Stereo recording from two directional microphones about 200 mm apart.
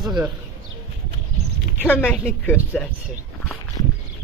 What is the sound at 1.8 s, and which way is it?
A woman's voice, 5° left (ahead or behind).